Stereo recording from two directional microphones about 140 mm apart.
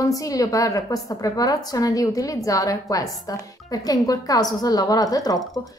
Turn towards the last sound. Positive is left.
turn(degrees=25)  # may be behind; listen again after turning